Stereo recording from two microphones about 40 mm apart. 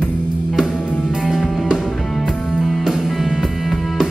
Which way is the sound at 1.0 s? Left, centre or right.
Centre.